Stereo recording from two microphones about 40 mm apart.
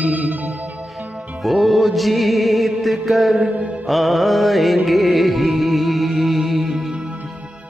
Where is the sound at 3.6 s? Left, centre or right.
Right.